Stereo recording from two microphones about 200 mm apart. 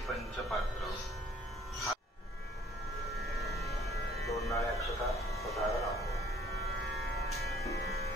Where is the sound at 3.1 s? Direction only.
Centre (ahead or behind).